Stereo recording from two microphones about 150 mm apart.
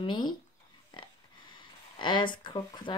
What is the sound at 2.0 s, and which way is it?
Speech, 30° left (ahead or behind).